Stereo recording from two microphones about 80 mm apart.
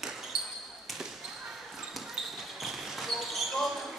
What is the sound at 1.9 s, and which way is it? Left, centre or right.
Basketball bounce, centre.